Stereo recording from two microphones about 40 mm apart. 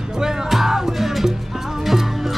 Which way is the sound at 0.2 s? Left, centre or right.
Centre.